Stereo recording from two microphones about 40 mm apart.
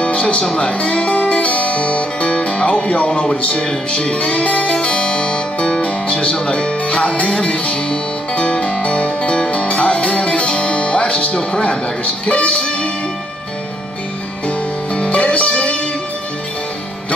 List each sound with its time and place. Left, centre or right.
0.0 s music: left
12.0 s speech: left
12.5 s music: centre
14.9 s music: left